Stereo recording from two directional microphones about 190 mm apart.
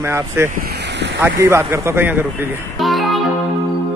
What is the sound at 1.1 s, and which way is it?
Speech, 15° right (ahead or behind).